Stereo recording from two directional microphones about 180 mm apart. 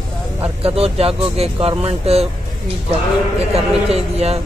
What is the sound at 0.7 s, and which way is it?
Speech, 35° right (ahead or behind).